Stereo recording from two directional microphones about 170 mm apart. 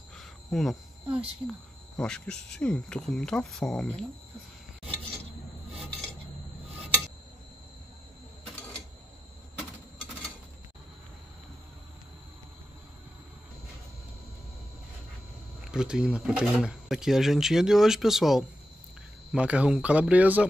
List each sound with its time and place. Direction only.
0.1 s a sound: centre (ahead or behind)
2.0 s speech: 5° left (ahead or behind)
15.6 s speech: 5° right (ahead or behind)